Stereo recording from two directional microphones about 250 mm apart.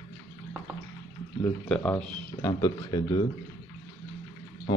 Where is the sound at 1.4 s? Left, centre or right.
Centre.